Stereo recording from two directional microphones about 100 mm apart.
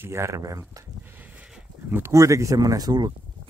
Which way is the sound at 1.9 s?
25° right (ahead or behind).